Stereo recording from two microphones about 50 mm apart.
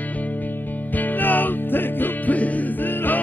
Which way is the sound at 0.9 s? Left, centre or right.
Left.